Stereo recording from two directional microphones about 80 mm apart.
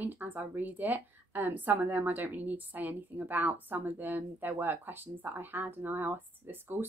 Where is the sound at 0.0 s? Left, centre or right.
Right.